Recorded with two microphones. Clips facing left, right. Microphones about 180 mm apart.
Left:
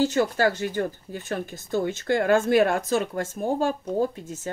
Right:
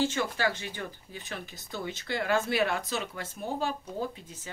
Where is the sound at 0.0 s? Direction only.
40° left (ahead or behind).